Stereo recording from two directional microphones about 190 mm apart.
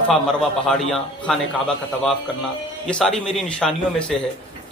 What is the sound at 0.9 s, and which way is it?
Speech, 5° left (ahead or behind).